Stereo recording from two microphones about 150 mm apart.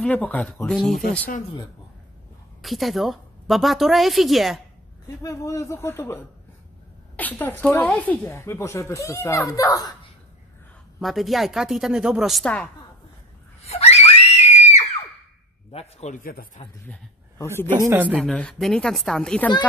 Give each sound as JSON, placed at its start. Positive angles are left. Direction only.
{"t": 0.0, "sound": "a woman's voice", "side_deg": 10}
{"t": 2.6, "sound": "a woman's voice", "side_deg": 0}
{"t": 5.0, "sound": "a man's voice", "side_deg": 20}
{"t": 11.0, "sound": "a woman's voice", "side_deg": 0}
{"t": 13.6, "sound": "screaming", "side_deg": 45}
{"t": 15.7, "sound": "a man's voice", "side_deg": 45}
{"t": 16.2, "sound": "a man's voice", "side_deg": 70}
{"t": 16.8, "sound": "a man's voice", "side_deg": 15}
{"t": 17.7, "sound": "a man's voice", "side_deg": -20}
{"t": 18.1, "sound": "a woman's voice", "side_deg": 5}